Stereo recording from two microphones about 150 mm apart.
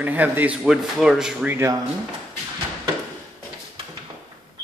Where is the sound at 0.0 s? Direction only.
10° right (ahead or behind).